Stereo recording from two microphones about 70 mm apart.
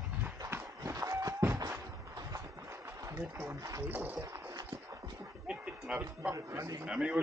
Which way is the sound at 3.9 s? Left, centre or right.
Right.